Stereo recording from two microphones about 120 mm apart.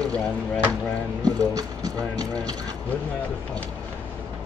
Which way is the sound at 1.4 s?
30° right (ahead or behind).